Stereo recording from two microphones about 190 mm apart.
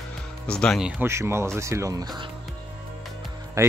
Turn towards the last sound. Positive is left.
turn(degrees=-15)  # may be behind; listen again after turning